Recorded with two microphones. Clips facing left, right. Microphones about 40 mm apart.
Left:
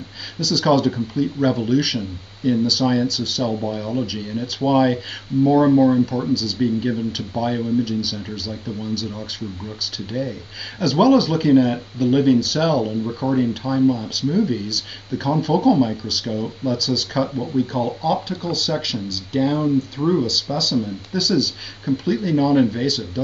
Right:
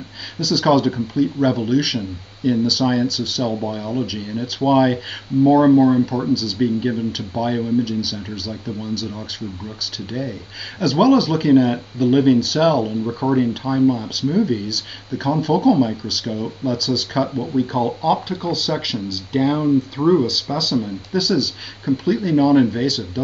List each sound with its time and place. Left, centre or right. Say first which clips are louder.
0.4 s speech: right 1 dB; centre
10.8 s speech: even; centre
17.6 s speech: right 2 dB; centre